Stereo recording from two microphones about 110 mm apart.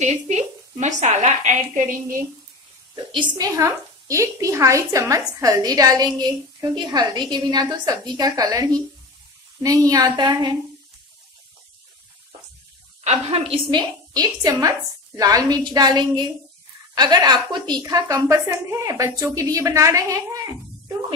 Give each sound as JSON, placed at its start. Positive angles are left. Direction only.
{"t": 0.0, "sound": "a woman's voice", "side_deg": -90}
{"t": 3.3, "sound": "a woman's voice", "side_deg": -30}
{"t": 13.0, "sound": "a woman's voice", "side_deg": -70}